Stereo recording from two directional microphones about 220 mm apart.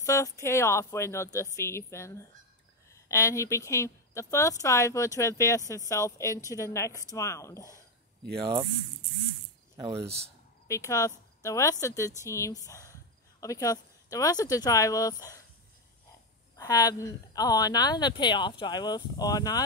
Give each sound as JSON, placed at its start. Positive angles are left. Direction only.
{"t": 0.0, "sound": "speech", "side_deg": 15}
{"t": 8.4, "sound": "speech", "side_deg": -20}
{"t": 9.8, "sound": "speech", "side_deg": -20}
{"t": 10.7, "sound": "speech", "side_deg": 15}
{"t": 16.5, "sound": "speech", "side_deg": 15}